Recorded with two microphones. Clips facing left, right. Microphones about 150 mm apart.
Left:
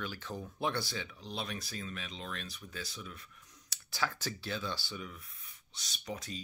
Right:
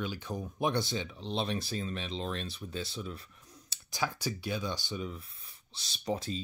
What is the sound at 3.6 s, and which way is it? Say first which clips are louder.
Speech: right 2 dB; 15° right (ahead or behind).